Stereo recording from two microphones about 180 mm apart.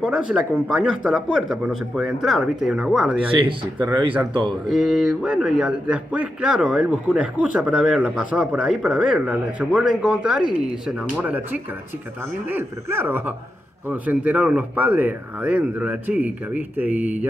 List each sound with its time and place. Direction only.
0.0 s a man's voice: 5° right (ahead or behind)
4.3 s speech: 25° right (ahead or behind)
4.6 s a man's voice: centre (ahead or behind)